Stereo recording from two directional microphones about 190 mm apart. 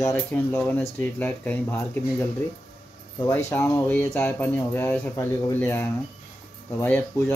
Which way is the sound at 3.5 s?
10° left (ahead or behind).